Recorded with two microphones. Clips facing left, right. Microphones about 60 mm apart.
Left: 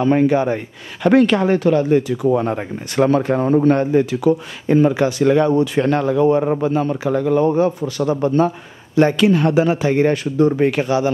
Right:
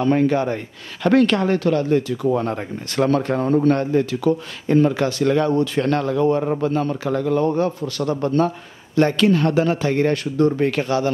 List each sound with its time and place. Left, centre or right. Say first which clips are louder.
0.0 s a man's voice: left 3 dB; centre